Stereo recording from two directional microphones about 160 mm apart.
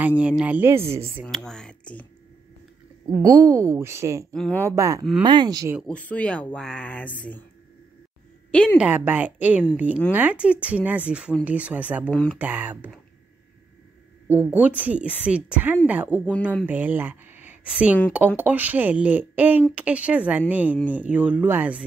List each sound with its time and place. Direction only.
0.0 s speech: 10° right (ahead or behind)
1.2 s speech: 5° left (ahead or behind)
3.2 s speech: 20° right (ahead or behind)
4.3 s speech: 5° left (ahead or behind)
4.6 s speech: 20° right (ahead or behind)
5.8 s speech: 5° left (ahead or behind)
8.5 s a woman's voice: 5° left (ahead or behind)
8.7 s speech: 10° right (ahead or behind)
12.1 s speech: 5° left (ahead or behind)
12.4 s speech: 10° right (ahead or behind)
14.5 s speech: 10° right (ahead or behind)